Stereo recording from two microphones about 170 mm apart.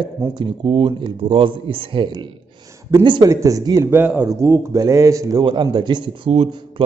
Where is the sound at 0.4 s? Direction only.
30° right (ahead or behind); by 4.3 s 10° right (ahead or behind).